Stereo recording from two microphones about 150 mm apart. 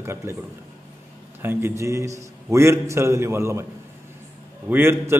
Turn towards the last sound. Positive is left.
turn(degrees=-15)  # may be behind; listen again after turning